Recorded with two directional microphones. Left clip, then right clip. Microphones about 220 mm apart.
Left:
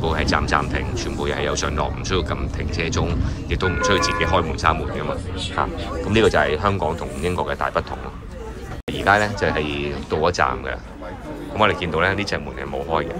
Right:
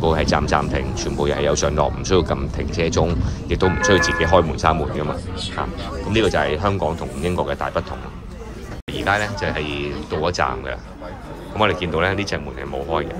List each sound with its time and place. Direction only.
0.0 s speech: 15° right (ahead or behind)
8.9 s speech: 5° right (ahead or behind)